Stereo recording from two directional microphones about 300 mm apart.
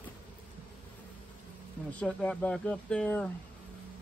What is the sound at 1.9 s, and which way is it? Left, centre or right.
Speech, centre.